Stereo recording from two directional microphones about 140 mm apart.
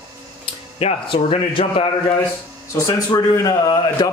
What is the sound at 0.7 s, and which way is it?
A man's voice, 40° left (ahead or behind).